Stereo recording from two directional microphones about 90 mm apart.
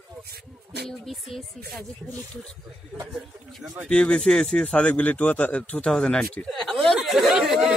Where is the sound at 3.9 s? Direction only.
10° left (ahead or behind).